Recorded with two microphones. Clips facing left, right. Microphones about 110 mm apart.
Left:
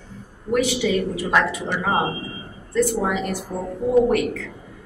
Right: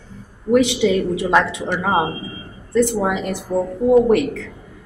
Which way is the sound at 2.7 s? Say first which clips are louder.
Right 3 dB; 20° right (ahead or behind).